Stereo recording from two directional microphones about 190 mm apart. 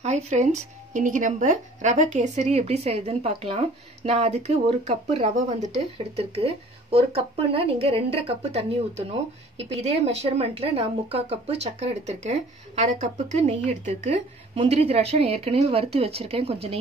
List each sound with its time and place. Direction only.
0.0 s speech: 40° right (ahead or behind)